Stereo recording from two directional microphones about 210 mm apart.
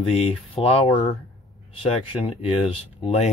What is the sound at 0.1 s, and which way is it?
Speech, 30° left (ahead or behind).